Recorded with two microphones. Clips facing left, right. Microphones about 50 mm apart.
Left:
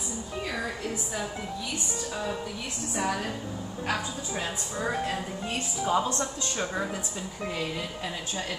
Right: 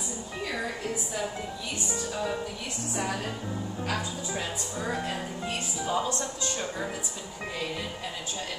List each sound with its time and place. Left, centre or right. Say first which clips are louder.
5.9 s speech: left 3 dB; left